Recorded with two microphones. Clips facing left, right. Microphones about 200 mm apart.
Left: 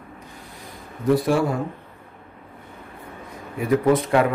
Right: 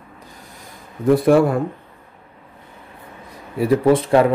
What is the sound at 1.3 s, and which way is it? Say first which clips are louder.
Speech: right 10 dB; 55° right (ahead or behind).